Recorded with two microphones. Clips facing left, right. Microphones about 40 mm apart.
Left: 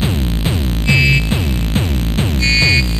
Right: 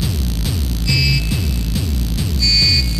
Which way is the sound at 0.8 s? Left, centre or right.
Left.